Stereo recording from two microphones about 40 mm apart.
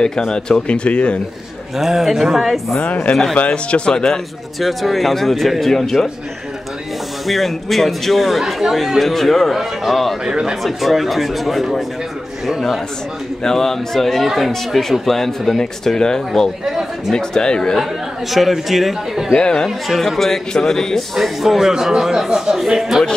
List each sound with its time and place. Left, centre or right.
0.0 s speech: centre
1.8 s speech: centre
2.8 s speech: left
3.8 s speech: centre
4.6 s speech: centre
7.2 s speech: centre
10.2 s speech: centre
10.6 s speech: centre
13.4 s speech: centre
18.3 s speech: centre
19.3 s speech: centre
20.0 s speech: centre
21.2 s speech: centre